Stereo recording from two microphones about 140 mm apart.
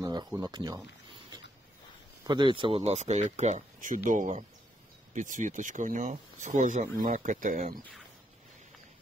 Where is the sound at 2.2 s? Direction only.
35° right (ahead or behind); by 7.7 s 70° right (ahead or behind).